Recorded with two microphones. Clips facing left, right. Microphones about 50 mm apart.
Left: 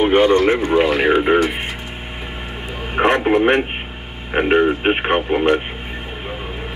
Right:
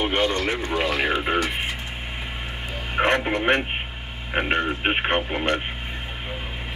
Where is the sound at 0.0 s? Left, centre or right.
Centre.